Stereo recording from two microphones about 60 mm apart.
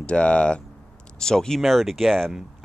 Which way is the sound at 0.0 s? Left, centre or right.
Centre.